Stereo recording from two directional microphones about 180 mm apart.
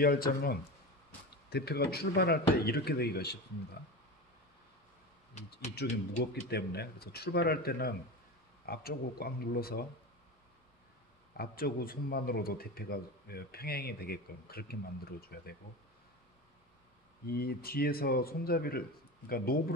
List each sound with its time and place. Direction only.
0.0 s speech: 55° left (ahead or behind)
6.5 s speech: 65° left (ahead or behind)
11.3 s speech: 55° left (ahead or behind)
17.3 s speech: 60° left (ahead or behind)